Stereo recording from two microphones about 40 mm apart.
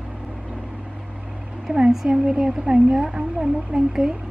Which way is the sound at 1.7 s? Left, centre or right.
Centre.